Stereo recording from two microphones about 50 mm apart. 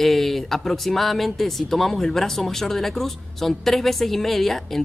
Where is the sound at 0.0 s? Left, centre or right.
Centre.